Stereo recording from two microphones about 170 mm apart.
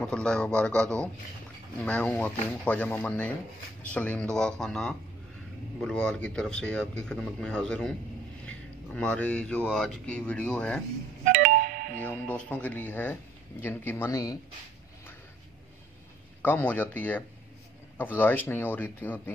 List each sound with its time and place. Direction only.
0.0 s speech: 5° left (ahead or behind)
11.2 s music: 55° right (ahead or behind)
12.0 s speech: 10° left (ahead or behind)
16.4 s speech: 10° left (ahead or behind)